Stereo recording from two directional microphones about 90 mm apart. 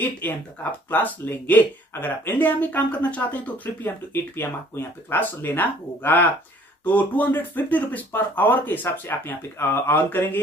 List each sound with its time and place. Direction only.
0.0 s speech: 20° left (ahead or behind)